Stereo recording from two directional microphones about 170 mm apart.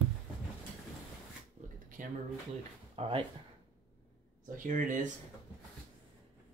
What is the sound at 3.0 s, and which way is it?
Speech, 35° right (ahead or behind).